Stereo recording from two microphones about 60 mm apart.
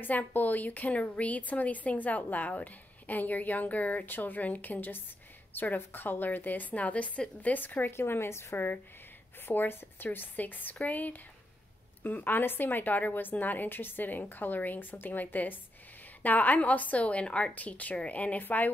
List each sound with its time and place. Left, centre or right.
0.0 s a woman's voice: left
7.9 s a woman's voice: left